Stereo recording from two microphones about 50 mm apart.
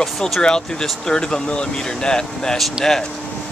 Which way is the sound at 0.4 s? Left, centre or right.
Centre.